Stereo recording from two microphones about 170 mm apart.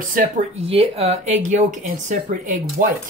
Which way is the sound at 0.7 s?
35° right (ahead or behind).